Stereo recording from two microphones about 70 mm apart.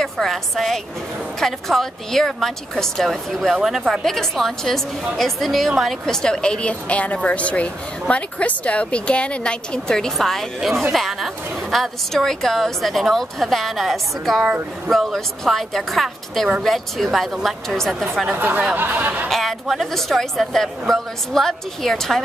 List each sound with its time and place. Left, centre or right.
0.0 s a woman's voice: centre
3.5 s a woman's voice: centre
18.3 s speech: right
19.2 s a woman's voice: centre